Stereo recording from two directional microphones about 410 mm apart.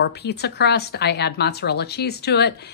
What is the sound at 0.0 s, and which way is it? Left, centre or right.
A woman's voice, left.